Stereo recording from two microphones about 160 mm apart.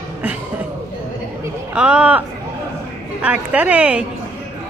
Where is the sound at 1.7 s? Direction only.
5° right (ahead or behind).